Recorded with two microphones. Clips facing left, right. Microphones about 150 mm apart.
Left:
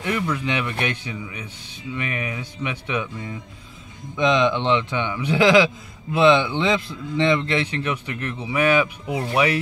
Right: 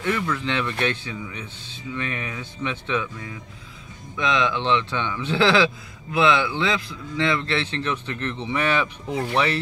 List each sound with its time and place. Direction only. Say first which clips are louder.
0.0 s a man's voice: left 1 dB; 15° left (ahead or behind)